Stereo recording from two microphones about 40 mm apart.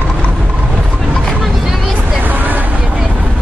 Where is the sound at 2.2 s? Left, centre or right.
Right.